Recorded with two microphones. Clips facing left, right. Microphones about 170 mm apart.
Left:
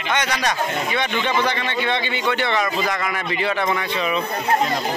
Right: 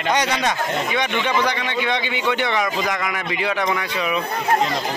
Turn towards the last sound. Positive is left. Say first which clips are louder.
# even
turn(degrees=-5)  # may be behind; listen again after turning